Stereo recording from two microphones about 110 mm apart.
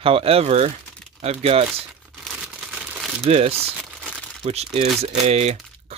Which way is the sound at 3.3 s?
70° right (ahead or behind).